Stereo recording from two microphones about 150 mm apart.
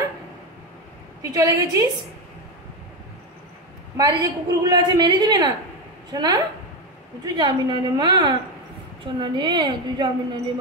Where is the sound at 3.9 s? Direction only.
25° right (ahead or behind).